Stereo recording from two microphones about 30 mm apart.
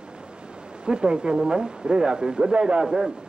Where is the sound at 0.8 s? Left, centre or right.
Right.